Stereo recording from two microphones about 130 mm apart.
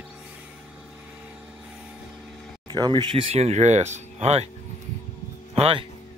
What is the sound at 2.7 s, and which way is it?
Speech, 35° right (ahead or behind).